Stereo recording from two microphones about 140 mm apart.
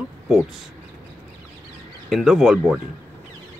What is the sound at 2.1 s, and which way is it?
Speech, centre (ahead or behind).